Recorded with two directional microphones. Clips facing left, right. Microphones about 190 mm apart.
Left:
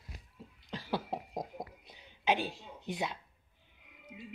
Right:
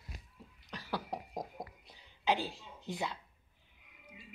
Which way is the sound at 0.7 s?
25° left (ahead or behind).